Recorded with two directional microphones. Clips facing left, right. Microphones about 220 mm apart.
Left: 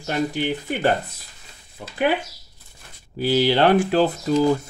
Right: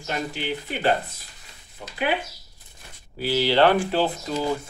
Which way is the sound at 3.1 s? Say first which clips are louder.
Left 2 dB; 45° left (ahead or behind).